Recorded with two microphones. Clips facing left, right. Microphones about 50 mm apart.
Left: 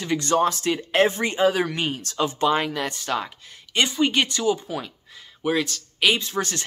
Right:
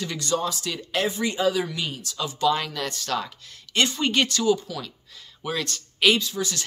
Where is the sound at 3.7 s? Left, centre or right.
Centre.